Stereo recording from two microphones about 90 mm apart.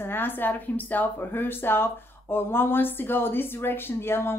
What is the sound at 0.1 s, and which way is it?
A woman's voice, 20° left (ahead or behind).